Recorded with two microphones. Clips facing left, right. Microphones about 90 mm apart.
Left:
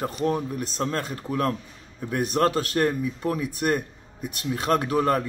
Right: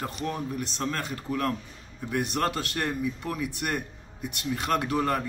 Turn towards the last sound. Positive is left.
turn(degrees=40)  # may be behind; listen again after turning